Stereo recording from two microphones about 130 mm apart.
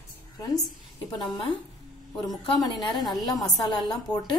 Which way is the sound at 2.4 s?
40° left (ahead or behind).